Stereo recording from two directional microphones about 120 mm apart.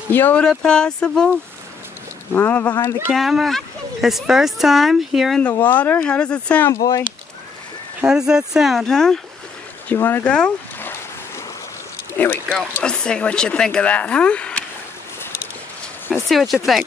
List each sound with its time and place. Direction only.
0.1 s speech: 15° left (ahead or behind)
2.3 s speech: 15° left (ahead or behind)
3.1 s speech: centre (ahead or behind)
5.6 s speech: 15° left (ahead or behind)
8.0 s speech: 5° right (ahead or behind)
9.8 s speech: 20° left (ahead or behind)
10.3 s speech: 5° left (ahead or behind)
12.1 s a sound: 20° left (ahead or behind)
12.8 s speech: 5° left (ahead or behind)
16.1 s speech: centre (ahead or behind)